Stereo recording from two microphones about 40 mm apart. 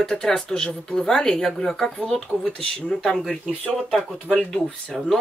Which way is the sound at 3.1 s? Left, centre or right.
Centre.